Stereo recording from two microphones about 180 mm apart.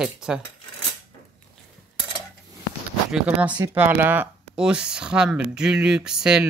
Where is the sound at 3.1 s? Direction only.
5° right (ahead or behind).